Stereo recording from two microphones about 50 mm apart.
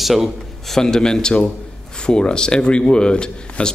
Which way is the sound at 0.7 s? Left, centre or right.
Centre.